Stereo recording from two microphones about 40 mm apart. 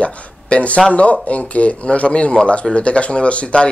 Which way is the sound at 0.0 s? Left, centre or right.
Left.